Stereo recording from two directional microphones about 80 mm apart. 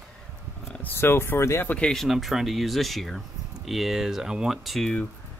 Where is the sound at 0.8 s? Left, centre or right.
Left.